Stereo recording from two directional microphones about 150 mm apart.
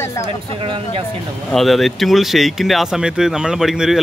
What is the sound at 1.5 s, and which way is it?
Speech, centre (ahead or behind).